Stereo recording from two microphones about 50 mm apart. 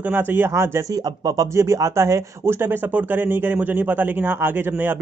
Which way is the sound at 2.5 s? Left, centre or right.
Right.